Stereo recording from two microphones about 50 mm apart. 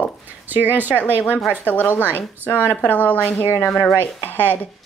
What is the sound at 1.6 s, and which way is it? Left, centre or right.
Speech, left.